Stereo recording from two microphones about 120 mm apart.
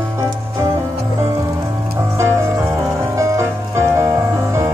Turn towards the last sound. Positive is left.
turn(degrees=-25)  # may be behind; listen again after turning